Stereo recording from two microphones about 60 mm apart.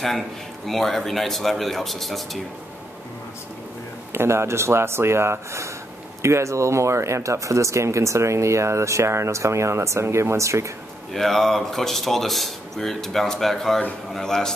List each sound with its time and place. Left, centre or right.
0.7 s speech: centre
4.1 s speech: right
11.1 s a man's voice: centre